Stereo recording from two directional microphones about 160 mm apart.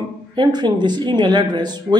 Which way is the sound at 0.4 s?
25° right (ahead or behind).